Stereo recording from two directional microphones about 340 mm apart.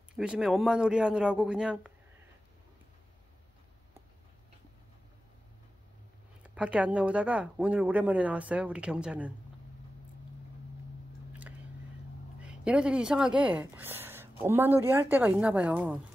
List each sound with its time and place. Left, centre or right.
0.1 s speech: centre
6.4 s speech: centre
12.4 s speech: centre